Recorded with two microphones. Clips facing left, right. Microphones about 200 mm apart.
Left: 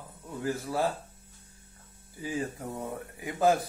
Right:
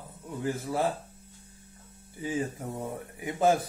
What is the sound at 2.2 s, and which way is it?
Speech, 20° right (ahead or behind).